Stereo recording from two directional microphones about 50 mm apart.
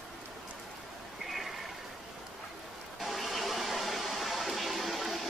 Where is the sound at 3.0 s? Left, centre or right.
Centre.